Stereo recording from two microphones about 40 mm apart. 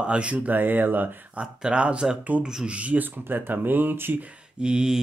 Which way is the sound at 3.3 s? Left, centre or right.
Right.